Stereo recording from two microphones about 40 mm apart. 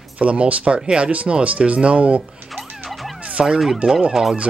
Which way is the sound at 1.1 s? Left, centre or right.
Right.